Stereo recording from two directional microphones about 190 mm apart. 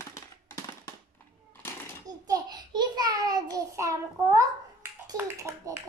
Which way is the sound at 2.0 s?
20° right (ahead or behind).